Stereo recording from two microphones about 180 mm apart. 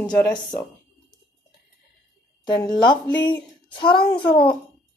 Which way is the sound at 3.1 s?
25° left (ahead or behind).